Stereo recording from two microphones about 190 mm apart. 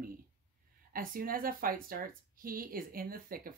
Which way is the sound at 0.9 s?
50° right (ahead or behind).